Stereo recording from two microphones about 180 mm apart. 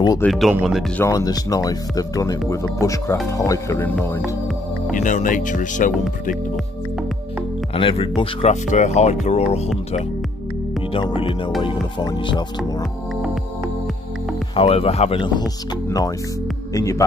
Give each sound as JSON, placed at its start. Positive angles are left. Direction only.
{"t": 0.2, "sound": "speech", "side_deg": 0}
{"t": 1.0, "sound": "speech", "side_deg": 20}
{"t": 3.9, "sound": "speech", "side_deg": 0}
{"t": 4.9, "sound": "speech", "side_deg": 45}
{"t": 7.7, "sound": "speech", "side_deg": 30}
{"t": 10.9, "sound": "speech", "side_deg": 30}
{"t": 14.5, "sound": "speech", "side_deg": 30}
{"t": 16.7, "sound": "speech", "side_deg": 15}